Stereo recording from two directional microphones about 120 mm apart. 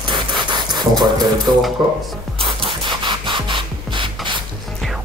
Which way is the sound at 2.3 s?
45° right (ahead or behind).